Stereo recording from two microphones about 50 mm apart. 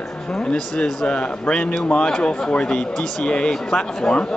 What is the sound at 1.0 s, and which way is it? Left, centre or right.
A man's voice, left.